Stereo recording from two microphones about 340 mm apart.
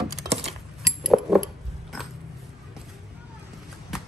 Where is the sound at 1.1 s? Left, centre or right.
Centre.